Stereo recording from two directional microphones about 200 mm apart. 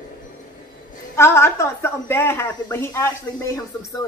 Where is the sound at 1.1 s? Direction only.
15° left (ahead or behind).